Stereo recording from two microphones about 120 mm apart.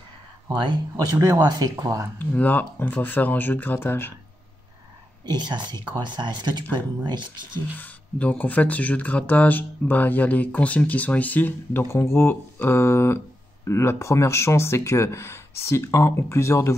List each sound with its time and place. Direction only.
0.5 s speech: 40° right (ahead or behind)
0.9 s speech: 30° right (ahead or behind)
2.1 s speech: 15° left (ahead or behind)
5.2 s speech: 35° right (ahead or behind)
7.5 s speech: 15° left (ahead or behind)